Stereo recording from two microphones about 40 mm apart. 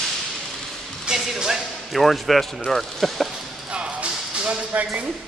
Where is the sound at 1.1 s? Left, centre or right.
Centre.